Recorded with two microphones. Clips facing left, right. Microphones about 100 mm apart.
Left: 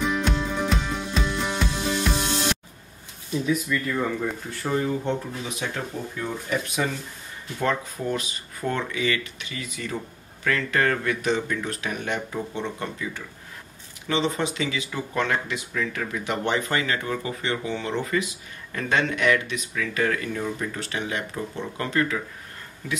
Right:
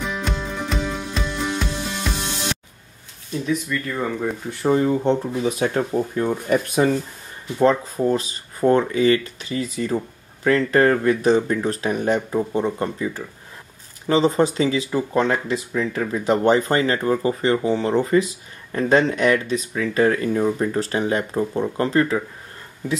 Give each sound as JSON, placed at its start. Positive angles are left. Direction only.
{"t": 0.0, "sound": "music", "side_deg": 0}
{"t": 3.4, "sound": "speech", "side_deg": 0}
{"t": 4.5, "sound": "speech", "side_deg": -25}
{"t": 6.1, "sound": "speech", "side_deg": -50}
{"t": 7.5, "sound": "speech", "side_deg": -30}